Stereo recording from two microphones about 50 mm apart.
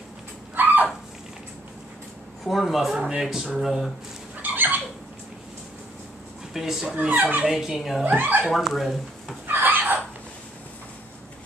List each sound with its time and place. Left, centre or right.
0.6 s a sound: right
2.4 s speech: centre
2.9 s speech: centre
4.4 s fowl: right
6.5 s speech: centre
8.0 s speech: right
8.5 s speech: centre
9.5 s a sound: right